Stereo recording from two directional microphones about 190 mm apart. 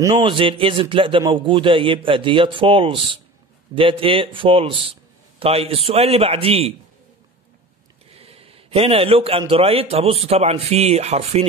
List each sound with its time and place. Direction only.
0.0 s a man's voice: 20° right (ahead or behind)
8.1 s a sound: 30° right (ahead or behind)
9.5 s speech: 30° right (ahead or behind)